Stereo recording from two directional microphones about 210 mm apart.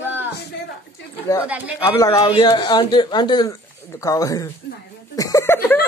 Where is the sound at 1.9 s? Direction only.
15° left (ahead or behind).